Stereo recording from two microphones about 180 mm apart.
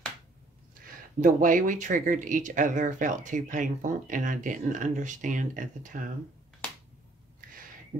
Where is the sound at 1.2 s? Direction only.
45° right (ahead or behind).